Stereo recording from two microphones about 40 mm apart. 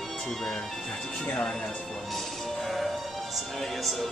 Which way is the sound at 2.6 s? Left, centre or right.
Centre.